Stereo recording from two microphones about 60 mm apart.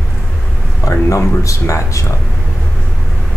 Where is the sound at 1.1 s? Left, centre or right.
Left.